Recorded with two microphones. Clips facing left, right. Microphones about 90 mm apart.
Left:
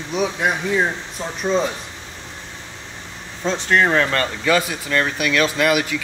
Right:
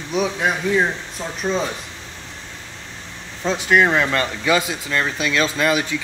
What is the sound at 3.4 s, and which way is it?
Speech, 10° right (ahead or behind).